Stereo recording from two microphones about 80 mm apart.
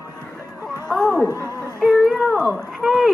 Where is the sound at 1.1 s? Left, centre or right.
Right.